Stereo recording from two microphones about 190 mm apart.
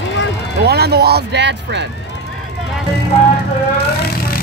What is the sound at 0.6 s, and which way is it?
Speech, 55° right (ahead or behind).